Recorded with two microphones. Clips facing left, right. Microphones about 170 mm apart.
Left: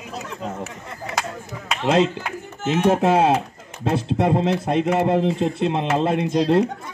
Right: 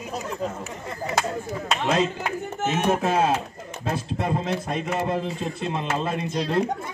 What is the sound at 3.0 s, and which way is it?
Speech, 70° left (ahead or behind).